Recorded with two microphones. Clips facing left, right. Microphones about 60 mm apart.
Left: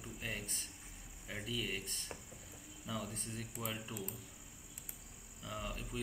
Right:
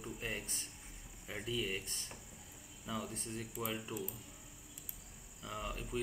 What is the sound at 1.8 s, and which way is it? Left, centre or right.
Speech, centre.